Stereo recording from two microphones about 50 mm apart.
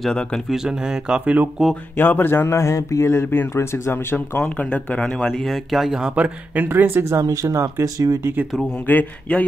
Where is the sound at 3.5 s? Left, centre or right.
Left.